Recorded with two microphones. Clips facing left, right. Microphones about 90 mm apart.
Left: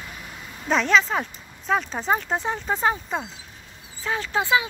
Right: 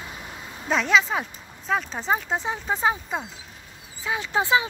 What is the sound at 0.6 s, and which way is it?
Speech, 5° right (ahead or behind).